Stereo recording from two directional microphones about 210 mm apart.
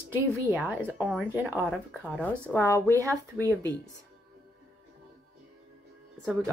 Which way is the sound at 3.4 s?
15° right (ahead or behind).